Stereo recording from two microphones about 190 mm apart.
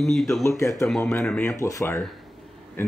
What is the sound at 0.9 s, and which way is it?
A man's voice, centre (ahead or behind).